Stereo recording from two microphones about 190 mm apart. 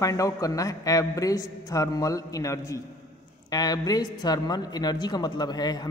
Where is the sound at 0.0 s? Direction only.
15° left (ahead or behind).